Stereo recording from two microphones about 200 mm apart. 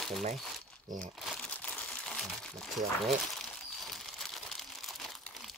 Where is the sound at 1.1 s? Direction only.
Centre (ahead or behind).